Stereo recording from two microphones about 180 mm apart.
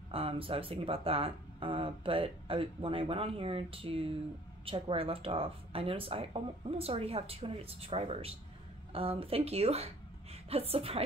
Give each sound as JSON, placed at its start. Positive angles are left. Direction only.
{"t": 0.1, "sound": "a woman's voice", "side_deg": -30}